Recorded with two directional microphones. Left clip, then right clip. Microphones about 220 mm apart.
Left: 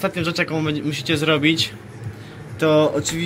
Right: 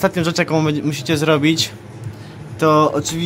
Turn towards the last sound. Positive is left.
turn(degrees=-15)  # may be behind; listen again after turning